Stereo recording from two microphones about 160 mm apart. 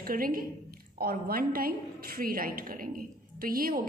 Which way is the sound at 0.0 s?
65° right (ahead or behind).